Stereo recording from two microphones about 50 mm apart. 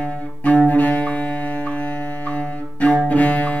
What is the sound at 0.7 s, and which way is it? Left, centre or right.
Cello, left.